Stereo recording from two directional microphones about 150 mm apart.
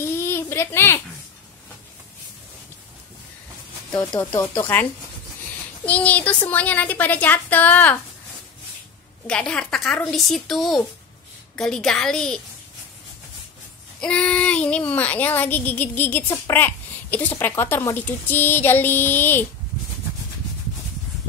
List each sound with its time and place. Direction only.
0.2 s a sound: 15° left (ahead or behind)
4.4 s child singing: 15° left (ahead or behind)
5.9 s child singing: 10° left (ahead or behind)
9.3 s a woman's voice: 5° left (ahead or behind)
14.0 s child singing: 5° left (ahead or behind)